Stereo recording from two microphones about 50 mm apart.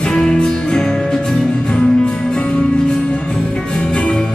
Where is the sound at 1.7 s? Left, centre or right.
Left.